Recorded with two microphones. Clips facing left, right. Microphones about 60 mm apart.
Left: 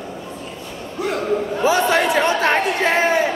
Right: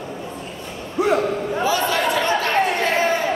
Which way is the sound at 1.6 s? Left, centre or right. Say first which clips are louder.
Left 3 dB; left.